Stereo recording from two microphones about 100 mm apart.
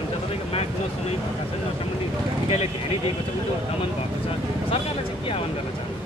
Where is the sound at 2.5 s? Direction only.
90° left.